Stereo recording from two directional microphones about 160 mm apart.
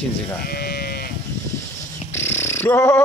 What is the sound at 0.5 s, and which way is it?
Sheep, 75° left (ahead or behind).